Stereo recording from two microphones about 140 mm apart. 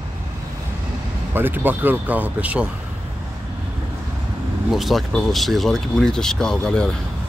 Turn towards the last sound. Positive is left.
turn(degrees=5)  # may be behind; listen again after turning